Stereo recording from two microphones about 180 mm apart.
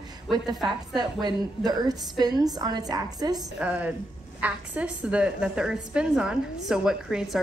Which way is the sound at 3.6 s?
10° right (ahead or behind).